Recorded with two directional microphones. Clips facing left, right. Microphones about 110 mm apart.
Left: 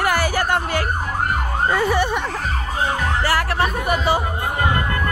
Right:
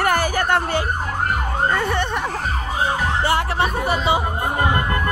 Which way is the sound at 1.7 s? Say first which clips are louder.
Left 3 dB; 5° left (ahead or behind).